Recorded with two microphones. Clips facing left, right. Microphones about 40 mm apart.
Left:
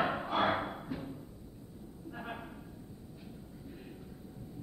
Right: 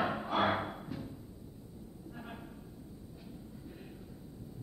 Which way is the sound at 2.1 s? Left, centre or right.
Left.